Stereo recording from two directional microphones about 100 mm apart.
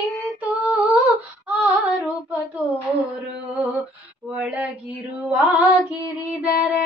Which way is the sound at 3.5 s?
10° right (ahead or behind).